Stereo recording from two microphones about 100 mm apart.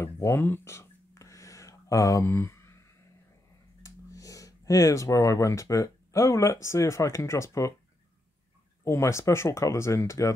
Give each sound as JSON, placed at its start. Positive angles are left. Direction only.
{"t": 0.0, "sound": "a sound", "side_deg": 30}
{"t": 3.8, "sound": "speech", "side_deg": 35}
{"t": 8.8, "sound": "speech", "side_deg": 30}